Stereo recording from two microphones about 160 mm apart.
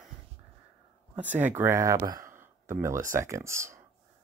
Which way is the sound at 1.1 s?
10° right (ahead or behind).